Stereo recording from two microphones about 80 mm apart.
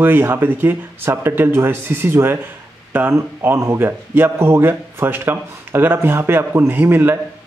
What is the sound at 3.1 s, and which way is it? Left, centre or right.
Speech, right.